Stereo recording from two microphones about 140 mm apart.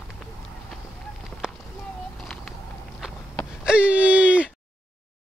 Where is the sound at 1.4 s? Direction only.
5° right (ahead or behind).